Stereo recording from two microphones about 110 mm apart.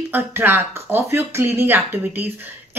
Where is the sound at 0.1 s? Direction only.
20° right (ahead or behind).